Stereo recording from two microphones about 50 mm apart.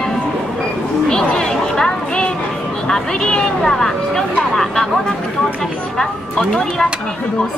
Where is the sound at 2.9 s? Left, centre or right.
Centre.